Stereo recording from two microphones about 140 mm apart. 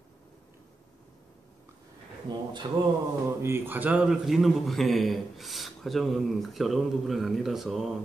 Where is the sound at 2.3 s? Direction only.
30° right (ahead or behind).